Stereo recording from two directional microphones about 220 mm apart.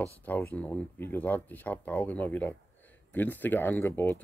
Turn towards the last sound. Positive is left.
turn(degrees=10)  # may be behind; listen again after turning